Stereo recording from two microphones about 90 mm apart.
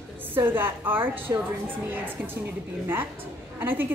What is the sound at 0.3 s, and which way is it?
A woman's voice, 25° right (ahead or behind).